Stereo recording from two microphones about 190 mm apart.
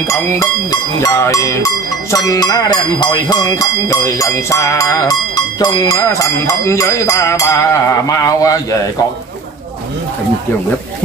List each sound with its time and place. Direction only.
0.1 s speech: 15° left (ahead or behind)